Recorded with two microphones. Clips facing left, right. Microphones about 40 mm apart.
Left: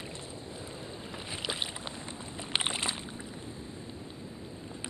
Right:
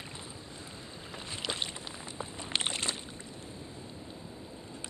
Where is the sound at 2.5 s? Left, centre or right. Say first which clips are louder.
Left 2 dB; centre.